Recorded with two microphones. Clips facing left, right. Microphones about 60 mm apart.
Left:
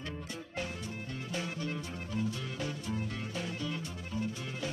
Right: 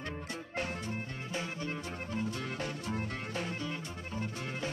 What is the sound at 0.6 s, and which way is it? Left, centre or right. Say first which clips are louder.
Music: right 3 dB; right.